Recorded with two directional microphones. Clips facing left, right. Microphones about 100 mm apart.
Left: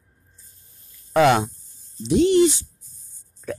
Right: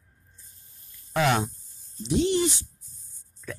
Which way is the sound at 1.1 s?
90° left.